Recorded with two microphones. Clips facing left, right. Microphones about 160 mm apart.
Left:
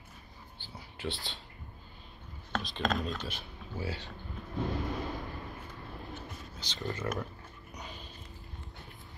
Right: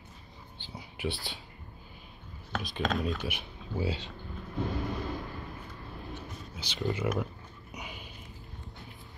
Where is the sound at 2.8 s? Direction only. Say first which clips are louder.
Right 2 dB; centre (ahead or behind).